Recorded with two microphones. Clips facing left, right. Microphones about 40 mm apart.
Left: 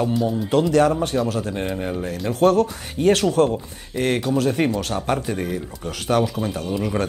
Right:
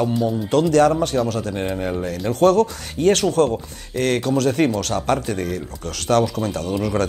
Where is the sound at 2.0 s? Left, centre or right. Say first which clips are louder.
Right 1 dB; centre.